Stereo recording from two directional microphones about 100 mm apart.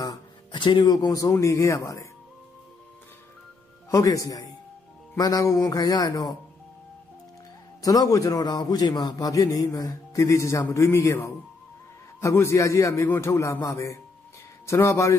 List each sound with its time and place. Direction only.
0.0 s speech: 45° left (ahead or behind)
3.9 s a man's voice: 35° left (ahead or behind)
7.8 s a man's voice: 35° left (ahead or behind)